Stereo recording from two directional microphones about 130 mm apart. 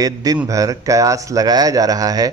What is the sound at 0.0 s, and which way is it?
Speech, 30° right (ahead or behind).